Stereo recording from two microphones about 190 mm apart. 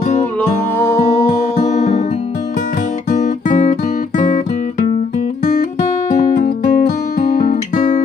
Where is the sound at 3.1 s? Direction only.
40° left (ahead or behind).